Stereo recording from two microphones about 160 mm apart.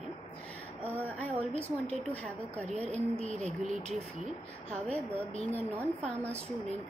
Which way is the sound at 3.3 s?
45° right (ahead or behind).